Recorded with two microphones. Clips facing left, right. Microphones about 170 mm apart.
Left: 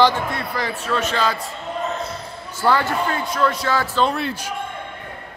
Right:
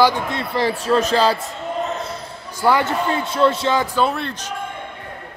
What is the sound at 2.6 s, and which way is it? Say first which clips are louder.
Speech: right 2 dB; 15° right (ahead or behind).